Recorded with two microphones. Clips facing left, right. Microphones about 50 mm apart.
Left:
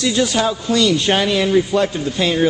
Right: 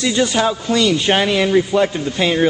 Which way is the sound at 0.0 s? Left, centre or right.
Centre.